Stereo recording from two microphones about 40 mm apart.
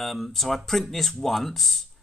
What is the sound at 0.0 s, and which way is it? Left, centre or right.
Speech, centre.